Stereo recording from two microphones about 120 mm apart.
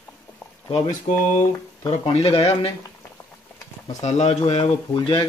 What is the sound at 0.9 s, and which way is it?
Speech, 90° left.